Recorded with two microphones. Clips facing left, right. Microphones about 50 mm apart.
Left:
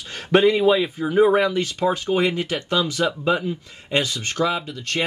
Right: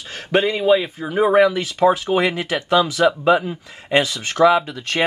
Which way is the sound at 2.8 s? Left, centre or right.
Right.